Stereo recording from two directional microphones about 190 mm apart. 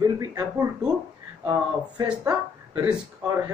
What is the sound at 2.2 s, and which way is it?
Speech, 20° right (ahead or behind).